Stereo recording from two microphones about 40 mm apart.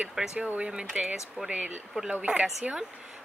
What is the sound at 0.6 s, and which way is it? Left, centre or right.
Speech, right.